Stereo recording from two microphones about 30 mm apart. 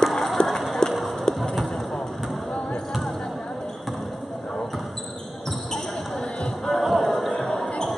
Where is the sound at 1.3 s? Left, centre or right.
Left.